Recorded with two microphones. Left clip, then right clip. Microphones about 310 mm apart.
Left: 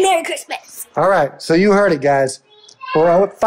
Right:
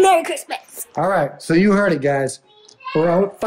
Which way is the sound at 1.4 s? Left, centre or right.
Centre.